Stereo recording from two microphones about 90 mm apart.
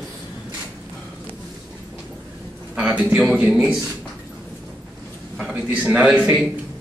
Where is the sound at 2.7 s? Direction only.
15° right (ahead or behind).